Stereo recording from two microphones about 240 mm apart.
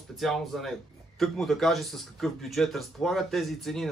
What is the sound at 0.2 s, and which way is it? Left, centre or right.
Speech, centre.